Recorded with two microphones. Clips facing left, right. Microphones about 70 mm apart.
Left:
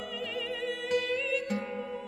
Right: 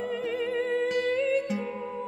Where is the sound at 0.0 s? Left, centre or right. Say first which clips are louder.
Right 7 dB; right.